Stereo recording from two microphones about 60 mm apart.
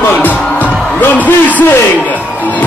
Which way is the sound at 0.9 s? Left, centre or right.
Left.